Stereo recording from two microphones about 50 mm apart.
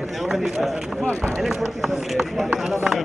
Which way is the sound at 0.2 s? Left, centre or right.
Centre.